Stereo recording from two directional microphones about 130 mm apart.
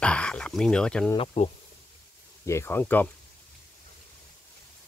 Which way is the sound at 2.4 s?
20° left (ahead or behind).